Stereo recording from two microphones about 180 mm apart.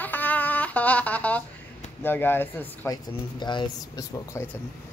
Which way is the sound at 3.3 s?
25° left (ahead or behind).